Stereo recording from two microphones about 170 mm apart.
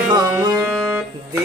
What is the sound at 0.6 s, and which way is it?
Music, centre (ahead or behind).